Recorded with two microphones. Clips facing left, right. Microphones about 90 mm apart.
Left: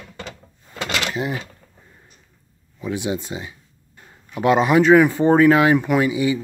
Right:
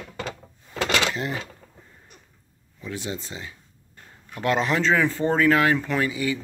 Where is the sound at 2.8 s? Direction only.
15° left (ahead or behind).